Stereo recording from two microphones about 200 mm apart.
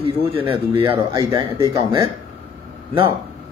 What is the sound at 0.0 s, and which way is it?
A man's voice, 25° right (ahead or behind).